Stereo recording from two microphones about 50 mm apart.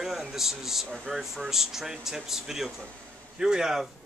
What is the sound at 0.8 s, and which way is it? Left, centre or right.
Speech, centre.